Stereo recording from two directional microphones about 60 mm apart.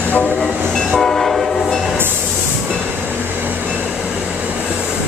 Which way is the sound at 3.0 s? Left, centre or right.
Right.